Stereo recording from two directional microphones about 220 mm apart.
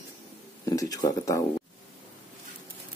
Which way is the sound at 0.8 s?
15° left (ahead or behind).